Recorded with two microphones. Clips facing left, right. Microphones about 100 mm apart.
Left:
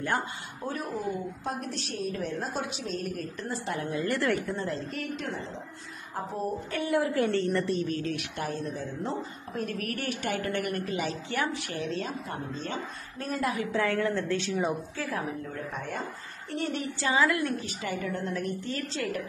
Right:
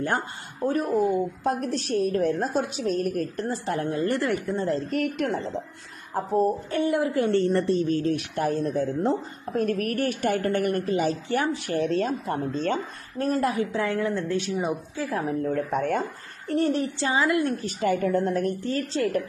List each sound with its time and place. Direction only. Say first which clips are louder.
0.7 s a woman's voice: right 10 dB; 55° right (ahead or behind); by 4.2 s 35° right (ahead or behind)
4.2 s a woman's voice: right 3 dB; 20° right (ahead or behind)
4.9 s speech: right 9 dB; 55° right (ahead or behind)
6.1 s a woman's voice: right 10 dB; 45° right (ahead or behind)
6.7 s a woman's voice: right 4 dB; 20° right (ahead or behind)
7.3 s a woman's voice: right 5 dB; 35° right (ahead or behind)
8.4 s a woman's voice: right 8 dB; 50° right (ahead or behind); by 11.7 s 30° right (ahead or behind)
11.7 s speech: right 8 dB; 50° right (ahead or behind)
13.2 s a woman's voice: right 6 dB; 35° right (ahead or behind)
13.7 s a woman's voice: right 1 dB; 20° right (ahead or behind)
15.4 s speech: right 11 dB; 55° right (ahead or behind)
16.5 s a woman's voice: right 8 dB; 45° right (ahead or behind)
17.0 s a woman's voice: right 1 dB; 25° right (ahead or behind)
17.6 s a woman's voice: right 9 dB; 45° right (ahead or behind)